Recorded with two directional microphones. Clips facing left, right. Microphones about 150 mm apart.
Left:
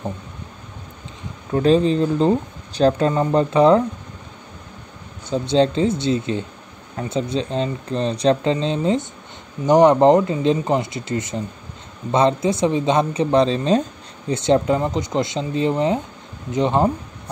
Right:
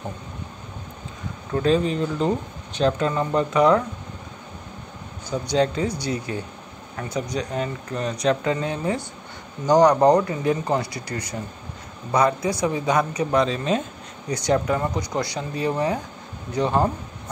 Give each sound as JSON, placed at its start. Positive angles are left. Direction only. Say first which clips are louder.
{"t": 1.5, "sound": "speech", "louder": "left 5 dB", "side_deg": 30}
{"t": 5.3, "sound": "speech", "louder": "left 4 dB", "side_deg": 25}